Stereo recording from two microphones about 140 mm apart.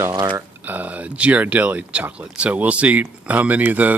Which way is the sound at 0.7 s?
10° right (ahead or behind).